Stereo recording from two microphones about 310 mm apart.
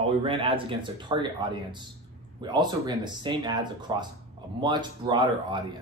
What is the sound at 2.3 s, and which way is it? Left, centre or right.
Speech, centre.